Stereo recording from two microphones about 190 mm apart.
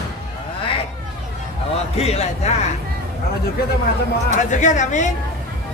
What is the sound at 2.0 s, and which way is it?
Speech, 35° left (ahead or behind).